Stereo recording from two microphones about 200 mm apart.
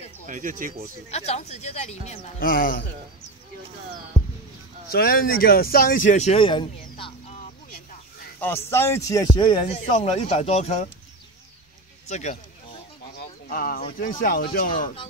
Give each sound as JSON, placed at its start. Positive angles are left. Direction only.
{"t": 0.3, "sound": "speech", "side_deg": -40}
{"t": 1.1, "sound": "speech", "side_deg": 30}
{"t": 4.9, "sound": "speech", "side_deg": 45}
{"t": 8.4, "sound": "a man's voice", "side_deg": 10}
{"t": 12.1, "sound": "speech", "side_deg": 35}
{"t": 13.5, "sound": "speech", "side_deg": 45}